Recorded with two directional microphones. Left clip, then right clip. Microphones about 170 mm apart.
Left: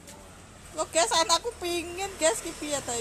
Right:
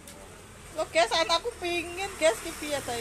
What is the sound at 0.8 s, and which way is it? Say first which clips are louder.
Speech: even; 15° left (ahead or behind).